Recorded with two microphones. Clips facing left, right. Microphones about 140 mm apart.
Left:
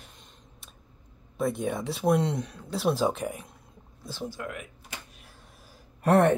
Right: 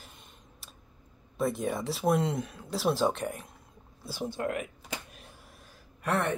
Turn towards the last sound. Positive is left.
turn(degrees=45)  # may be behind; listen again after turning